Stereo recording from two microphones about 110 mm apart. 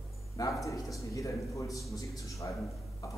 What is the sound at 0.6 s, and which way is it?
A man's voice, 30° left (ahead or behind).